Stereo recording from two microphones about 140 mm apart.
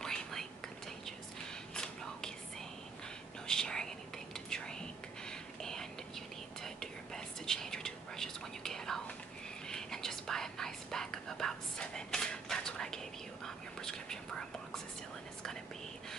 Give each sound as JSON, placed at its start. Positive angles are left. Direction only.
{"t": 0.0, "sound": "whispering", "side_deg": 5}
{"t": 3.4, "sound": "whispering", "side_deg": 5}